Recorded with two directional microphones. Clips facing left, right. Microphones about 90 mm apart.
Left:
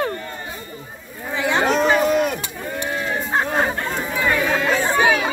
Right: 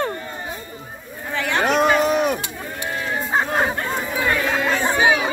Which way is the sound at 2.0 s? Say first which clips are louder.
Even; 15° right (ahead or behind).